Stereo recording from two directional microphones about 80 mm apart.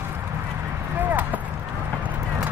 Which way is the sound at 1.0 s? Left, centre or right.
Right.